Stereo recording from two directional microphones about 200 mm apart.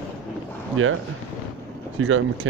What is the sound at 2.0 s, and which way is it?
Speech, 80° right.